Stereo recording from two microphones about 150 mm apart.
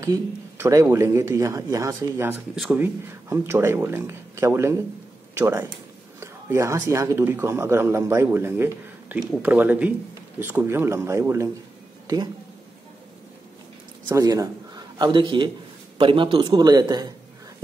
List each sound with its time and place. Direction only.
0.0 s speech: 20° right (ahead or behind)
2.5 s speech: centre (ahead or behind)
2.8 s speech: 15° right (ahead or behind)
14.0 s a man's voice: 20° right (ahead or behind)